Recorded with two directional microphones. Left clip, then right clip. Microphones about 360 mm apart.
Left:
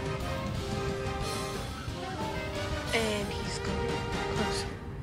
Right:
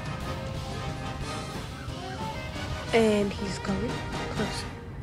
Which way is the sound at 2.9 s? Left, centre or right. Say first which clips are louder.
Right 8 dB; left.